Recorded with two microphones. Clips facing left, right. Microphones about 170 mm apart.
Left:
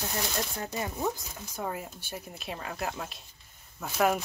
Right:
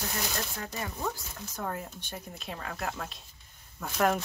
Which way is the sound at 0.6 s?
25° left (ahead or behind).